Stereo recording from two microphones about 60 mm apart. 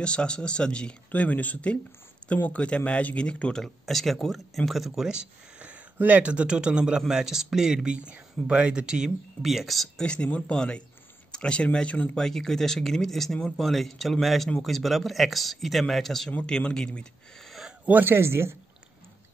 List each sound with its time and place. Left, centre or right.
0.0 s speech: centre
3.6 s speech: centre
9.4 s speech: centre
10.0 s speech: centre
12.2 s speech: centre
16.3 s speech: centre
17.8 s speech: right